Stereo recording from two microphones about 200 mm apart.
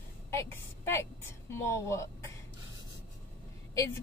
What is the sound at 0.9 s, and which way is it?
A woman's voice, 15° left (ahead or behind).